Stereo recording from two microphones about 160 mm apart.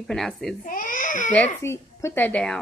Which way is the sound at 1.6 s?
15° left (ahead or behind).